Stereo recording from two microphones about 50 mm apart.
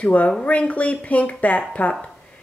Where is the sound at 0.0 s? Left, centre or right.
Left.